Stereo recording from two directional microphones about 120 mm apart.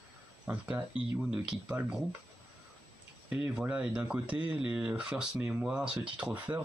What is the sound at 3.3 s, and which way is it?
Speech, 10° right (ahead or behind).